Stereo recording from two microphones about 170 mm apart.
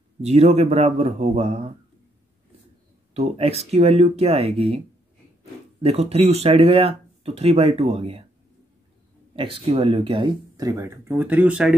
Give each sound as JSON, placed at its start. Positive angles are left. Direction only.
{"t": 0.2, "sound": "speech", "side_deg": -40}
{"t": 3.2, "sound": "speech", "side_deg": -35}
{"t": 9.3, "sound": "speech", "side_deg": -30}